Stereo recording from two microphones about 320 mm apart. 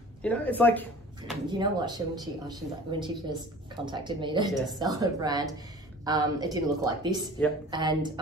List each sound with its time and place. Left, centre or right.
0.2 s speech: centre
1.6 s speech: centre